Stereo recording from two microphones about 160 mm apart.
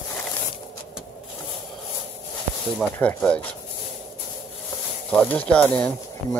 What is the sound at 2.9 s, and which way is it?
Speech, 10° left (ahead or behind).